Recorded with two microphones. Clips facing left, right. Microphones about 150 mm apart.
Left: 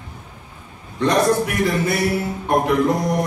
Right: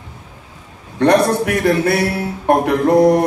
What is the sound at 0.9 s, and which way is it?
A man's voice, 65° right (ahead or behind).